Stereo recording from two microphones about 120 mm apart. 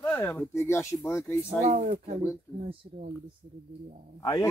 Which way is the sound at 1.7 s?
70° right (ahead or behind).